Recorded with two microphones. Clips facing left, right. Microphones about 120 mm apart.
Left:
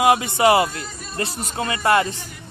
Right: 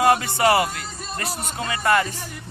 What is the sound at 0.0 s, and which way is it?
Speech, 15° left (ahead or behind).